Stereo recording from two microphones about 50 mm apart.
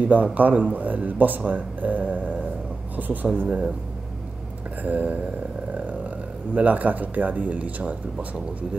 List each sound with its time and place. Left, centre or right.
0.0 s speech: right
3.4 s speech: right
4.8 s speech: right
6.5 s speech: right